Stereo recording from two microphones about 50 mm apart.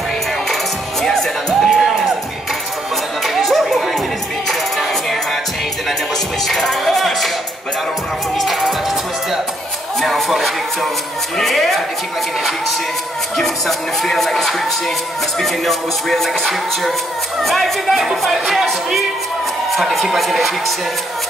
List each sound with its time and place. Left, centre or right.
1.0 s music: centre
3.3 s chatter: centre
6.4 s music: centre
8.4 s music: centre
9.9 s a sound: centre
11.3 s speech: centre
13.4 s speech: centre